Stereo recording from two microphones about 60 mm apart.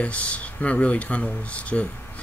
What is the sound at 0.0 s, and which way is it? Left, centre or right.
Speech, left.